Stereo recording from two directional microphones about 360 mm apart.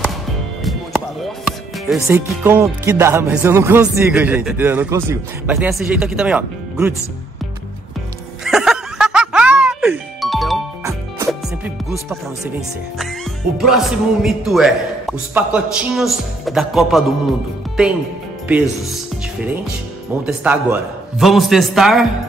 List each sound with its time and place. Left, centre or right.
0.7 s speech: centre
8.5 s music: centre
12.4 s speech: centre
18.5 s speech: centre
20.2 s speech: centre